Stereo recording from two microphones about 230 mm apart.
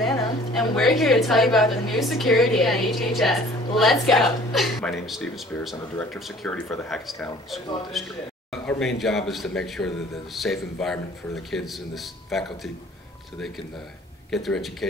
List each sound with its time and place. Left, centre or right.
0.6 s a woman's voice: centre
14.3 s a woman's voice: centre